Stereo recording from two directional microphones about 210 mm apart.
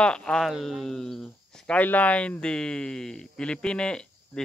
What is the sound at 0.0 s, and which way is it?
Speech, 5° left (ahead or behind).